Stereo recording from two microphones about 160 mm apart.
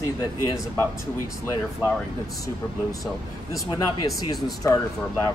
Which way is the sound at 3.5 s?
25° left (ahead or behind).